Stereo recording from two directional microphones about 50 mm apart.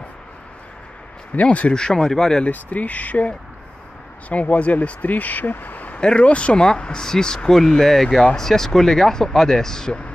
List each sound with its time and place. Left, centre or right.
1.3 s speech: left
1.7 s speech: centre
2.4 s speech: left
5.9 s speech: centre